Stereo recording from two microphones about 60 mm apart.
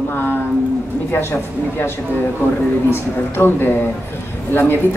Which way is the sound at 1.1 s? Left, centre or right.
Left.